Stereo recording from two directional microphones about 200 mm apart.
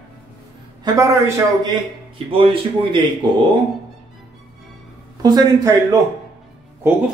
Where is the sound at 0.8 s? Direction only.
15° right (ahead or behind).